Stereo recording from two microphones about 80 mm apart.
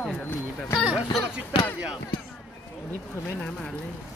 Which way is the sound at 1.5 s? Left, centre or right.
Left.